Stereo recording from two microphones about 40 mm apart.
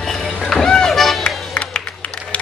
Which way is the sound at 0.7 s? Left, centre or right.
Centre.